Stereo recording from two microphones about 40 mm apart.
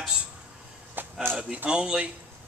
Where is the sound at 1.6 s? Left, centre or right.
Centre.